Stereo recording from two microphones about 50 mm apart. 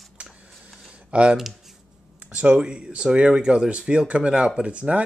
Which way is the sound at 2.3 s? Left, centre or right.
Centre.